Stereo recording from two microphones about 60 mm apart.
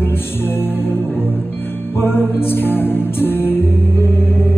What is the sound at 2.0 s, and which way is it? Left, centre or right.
Music, left.